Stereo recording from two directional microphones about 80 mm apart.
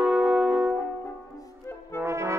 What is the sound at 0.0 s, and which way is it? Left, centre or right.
Music, centre.